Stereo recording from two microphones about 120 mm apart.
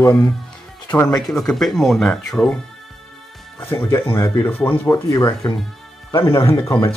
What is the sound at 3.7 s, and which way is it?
Speech, 20° left (ahead or behind).